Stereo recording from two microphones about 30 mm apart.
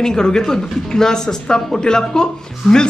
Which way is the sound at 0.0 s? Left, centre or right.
Left.